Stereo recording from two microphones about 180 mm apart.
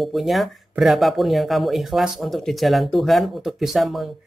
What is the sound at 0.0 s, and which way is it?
Speech, centre (ahead or behind).